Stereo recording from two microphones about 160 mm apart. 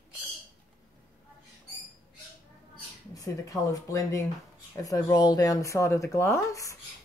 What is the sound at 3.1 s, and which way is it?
Speech, 20° left (ahead or behind).